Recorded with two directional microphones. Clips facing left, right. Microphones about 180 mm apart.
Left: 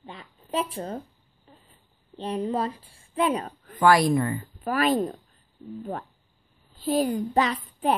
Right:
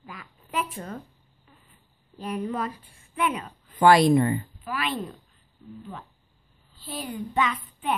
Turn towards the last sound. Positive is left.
turn(degrees=35)  # may be behind; listen again after turning